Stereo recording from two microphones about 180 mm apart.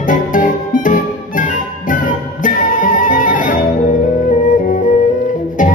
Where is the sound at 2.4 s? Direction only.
45° left (ahead or behind).